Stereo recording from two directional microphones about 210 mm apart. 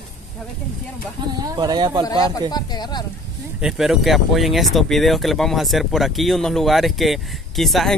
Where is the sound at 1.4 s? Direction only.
20° right (ahead or behind).